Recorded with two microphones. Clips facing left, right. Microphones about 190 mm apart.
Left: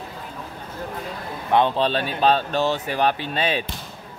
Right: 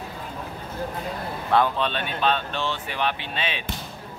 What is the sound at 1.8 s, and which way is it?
Speech, 35° left (ahead or behind).